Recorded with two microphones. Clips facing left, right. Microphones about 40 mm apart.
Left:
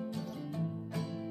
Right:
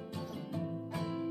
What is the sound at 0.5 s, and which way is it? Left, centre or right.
Music, centre.